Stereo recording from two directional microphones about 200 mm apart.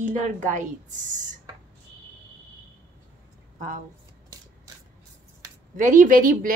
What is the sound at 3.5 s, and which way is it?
Speech, 45° right (ahead or behind).